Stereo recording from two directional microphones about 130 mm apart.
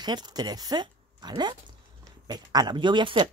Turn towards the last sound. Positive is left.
turn(degrees=-40)  # may be behind; listen again after turning